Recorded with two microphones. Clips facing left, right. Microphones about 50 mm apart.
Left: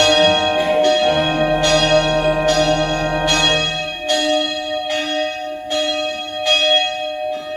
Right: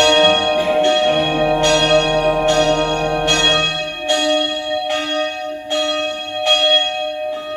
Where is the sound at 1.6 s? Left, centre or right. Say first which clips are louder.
Even; right.